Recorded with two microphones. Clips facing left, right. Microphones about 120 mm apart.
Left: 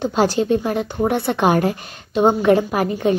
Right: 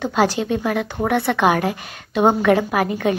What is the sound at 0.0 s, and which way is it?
A woman's voice, 35° left (ahead or behind).